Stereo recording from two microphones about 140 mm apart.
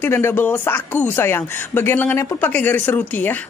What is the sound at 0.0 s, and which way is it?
Speech, 15° left (ahead or behind).